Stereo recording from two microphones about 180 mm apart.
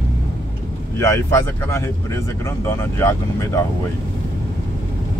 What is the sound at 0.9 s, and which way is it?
Speech, 15° left (ahead or behind).